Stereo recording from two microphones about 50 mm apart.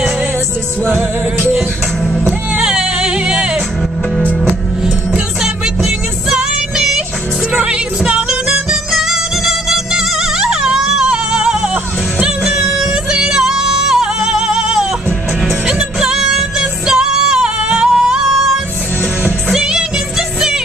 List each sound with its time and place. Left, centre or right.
0.8 s music: right
2.1 s music: centre
6.3 s music: centre
16.0 s music: centre
19.5 s music: centre